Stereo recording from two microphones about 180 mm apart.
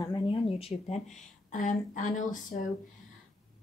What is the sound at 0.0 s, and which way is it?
Speech, 25° left (ahead or behind).